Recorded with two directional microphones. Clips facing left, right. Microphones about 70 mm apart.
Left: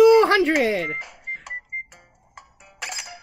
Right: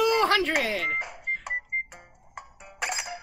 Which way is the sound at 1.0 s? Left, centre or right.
Centre.